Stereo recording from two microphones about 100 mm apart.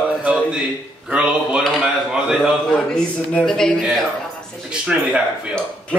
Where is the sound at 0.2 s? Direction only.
10° right (ahead or behind).